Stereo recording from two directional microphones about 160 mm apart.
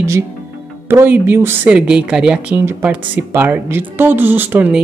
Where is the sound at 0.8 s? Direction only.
10° right (ahead or behind).